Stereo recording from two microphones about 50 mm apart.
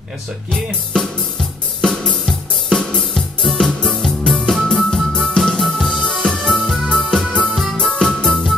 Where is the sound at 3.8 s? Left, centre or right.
Centre.